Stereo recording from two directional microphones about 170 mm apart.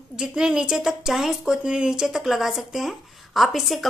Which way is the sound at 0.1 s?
5° right (ahead or behind).